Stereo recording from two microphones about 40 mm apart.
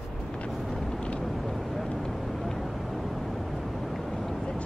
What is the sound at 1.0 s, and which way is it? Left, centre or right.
Vehicle, left.